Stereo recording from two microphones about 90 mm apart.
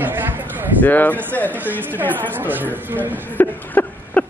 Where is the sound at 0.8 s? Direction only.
20° left (ahead or behind).